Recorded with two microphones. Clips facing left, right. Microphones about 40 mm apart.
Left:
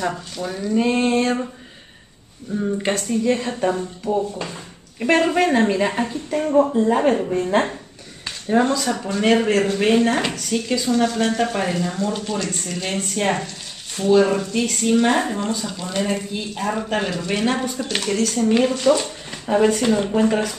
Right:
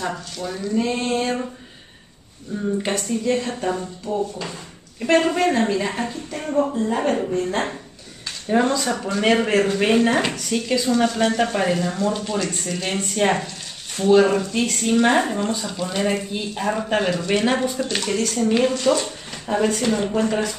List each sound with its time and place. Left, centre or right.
0.4 s speech: centre
0.7 s a woman's voice: centre
2.5 s a woman's voice: centre
5.0 s a woman's voice: centre
8.7 s speech: centre